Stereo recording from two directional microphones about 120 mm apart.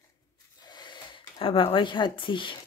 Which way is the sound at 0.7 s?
40° left (ahead or behind).